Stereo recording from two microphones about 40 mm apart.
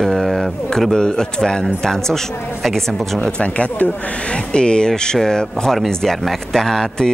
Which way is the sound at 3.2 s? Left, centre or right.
Left.